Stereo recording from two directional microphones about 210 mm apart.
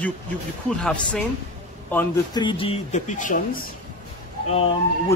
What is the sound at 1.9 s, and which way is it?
Speech, 20° left (ahead or behind).